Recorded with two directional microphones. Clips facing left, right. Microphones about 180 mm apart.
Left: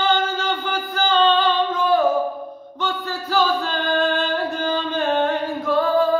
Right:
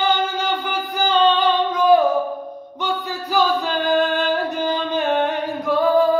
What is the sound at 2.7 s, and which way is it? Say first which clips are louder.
Male singing: right 1 dB; 15° right (ahead or behind).